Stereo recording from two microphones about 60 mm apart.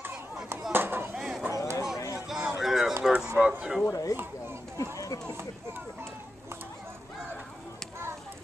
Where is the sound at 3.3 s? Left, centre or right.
Right.